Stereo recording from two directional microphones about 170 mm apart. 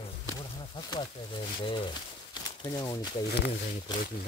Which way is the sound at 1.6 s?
30° left (ahead or behind).